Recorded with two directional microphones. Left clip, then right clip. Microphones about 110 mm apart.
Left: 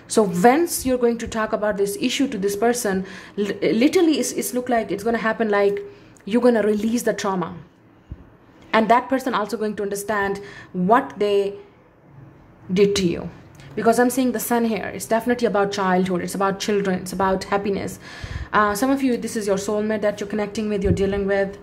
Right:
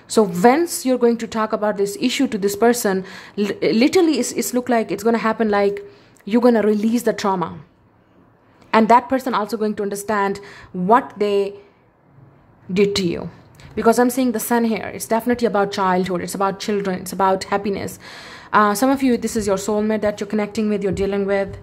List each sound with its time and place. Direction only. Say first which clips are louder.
0.1 s a woman's voice: right 2 dB; 30° right (ahead or behind)
8.6 s a woman's voice: right 3 dB; 40° right (ahead or behind)
12.7 s a woman's voice: even; 35° right (ahead or behind)